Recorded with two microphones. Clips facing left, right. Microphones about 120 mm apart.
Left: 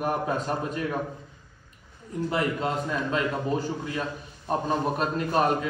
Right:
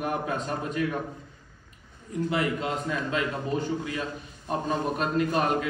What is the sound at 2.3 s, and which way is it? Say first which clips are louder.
A man's voice: left 2 dB; 40° left (ahead or behind).